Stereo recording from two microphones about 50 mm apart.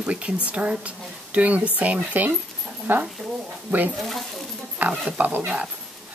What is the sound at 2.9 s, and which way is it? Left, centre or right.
Speech, right.